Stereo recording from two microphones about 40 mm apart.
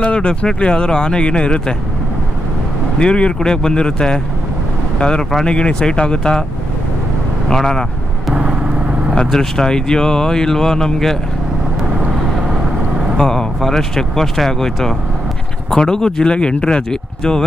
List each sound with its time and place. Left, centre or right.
0.0 s speech: left
3.0 s speech: left
7.4 s speech: centre
8.4 s vehicle: right
9.1 s speech: left
13.2 s speech: centre